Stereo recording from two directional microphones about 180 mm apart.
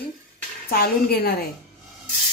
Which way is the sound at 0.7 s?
60° left (ahead or behind).